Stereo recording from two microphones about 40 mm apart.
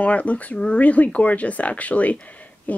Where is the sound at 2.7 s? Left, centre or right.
Left.